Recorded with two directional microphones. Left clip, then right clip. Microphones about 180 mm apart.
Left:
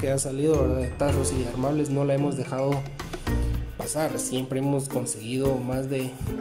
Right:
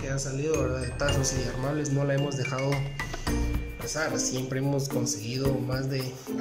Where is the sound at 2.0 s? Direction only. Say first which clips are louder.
Left 3 dB; 15° left (ahead or behind).